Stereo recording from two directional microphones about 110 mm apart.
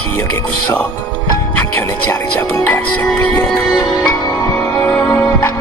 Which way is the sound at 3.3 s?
20° left (ahead or behind).